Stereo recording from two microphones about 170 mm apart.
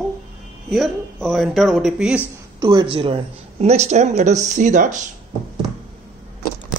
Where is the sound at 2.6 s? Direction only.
30° right (ahead or behind); by 5.1 s 45° right (ahead or behind).